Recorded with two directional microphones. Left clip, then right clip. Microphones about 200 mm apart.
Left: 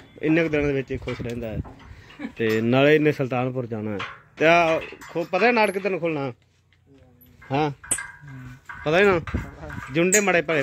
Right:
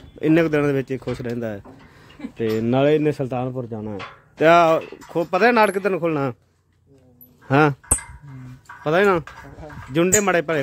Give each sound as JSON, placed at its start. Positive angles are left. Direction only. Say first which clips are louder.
{"t": 0.2, "sound": "speech", "louder": "right 4 dB", "side_deg": -20}
{"t": 2.3, "sound": "speech", "louder": "even", "side_deg": 0}
{"t": 4.4, "sound": "speech", "louder": "right 4 dB", "side_deg": -15}
{"t": 7.4, "sound": "speech", "louder": "right 7 dB", "side_deg": -35}
{"t": 8.8, "sound": "speech", "louder": "right 1 dB", "side_deg": -5}